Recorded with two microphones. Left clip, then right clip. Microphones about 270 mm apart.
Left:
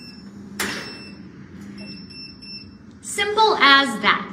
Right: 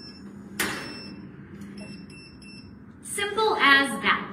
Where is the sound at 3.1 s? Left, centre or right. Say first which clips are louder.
Left 7 dB; centre.